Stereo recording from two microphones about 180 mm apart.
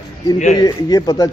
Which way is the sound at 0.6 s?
20° left (ahead or behind).